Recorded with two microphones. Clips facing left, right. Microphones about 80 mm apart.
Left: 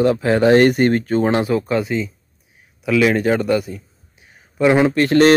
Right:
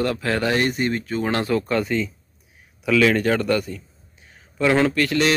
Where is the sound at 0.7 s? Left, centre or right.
Left.